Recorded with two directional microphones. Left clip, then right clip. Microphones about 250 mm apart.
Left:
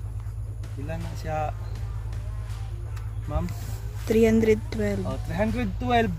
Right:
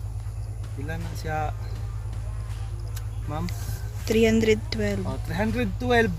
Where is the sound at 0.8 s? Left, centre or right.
Centre.